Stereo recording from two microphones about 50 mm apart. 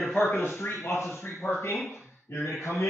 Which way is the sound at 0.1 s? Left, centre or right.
Left.